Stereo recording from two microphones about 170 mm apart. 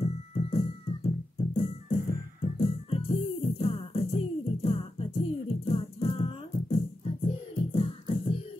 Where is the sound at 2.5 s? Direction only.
35° left (ahead or behind).